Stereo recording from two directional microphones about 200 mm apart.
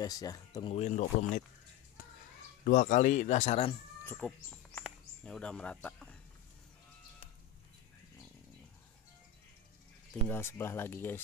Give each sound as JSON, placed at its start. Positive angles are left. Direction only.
{"t": 0.0, "sound": "speech", "side_deg": 20}
{"t": 0.7, "sound": "speech", "side_deg": 35}
{"t": 2.6, "sound": "speech", "side_deg": 40}
{"t": 4.0, "sound": "speech", "side_deg": 10}
{"t": 10.2, "sound": "speech", "side_deg": 10}